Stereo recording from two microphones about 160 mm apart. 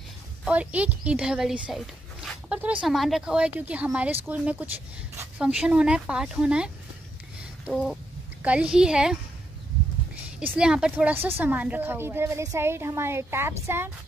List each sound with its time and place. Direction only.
0.5 s a woman's voice: 10° right (ahead or behind)
7.6 s a sound: centre (ahead or behind)
8.4 s a woman's voice: 10° right (ahead or behind)
10.4 s a woman's voice: 5° right (ahead or behind)